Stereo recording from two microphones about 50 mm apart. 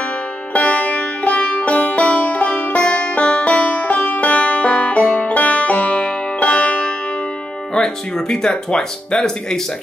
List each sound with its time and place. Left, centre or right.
0.5 s music: left
7.7 s speech: centre